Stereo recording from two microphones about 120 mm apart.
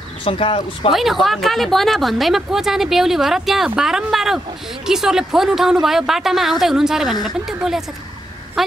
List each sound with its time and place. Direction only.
0.2 s speech: 50° left (ahead or behind)
0.9 s a woman's voice: centre (ahead or behind)